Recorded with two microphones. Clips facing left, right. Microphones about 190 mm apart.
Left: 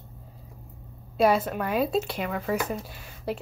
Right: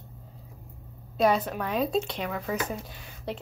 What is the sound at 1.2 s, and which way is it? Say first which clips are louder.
Speech: left 2 dB; 10° left (ahead or behind).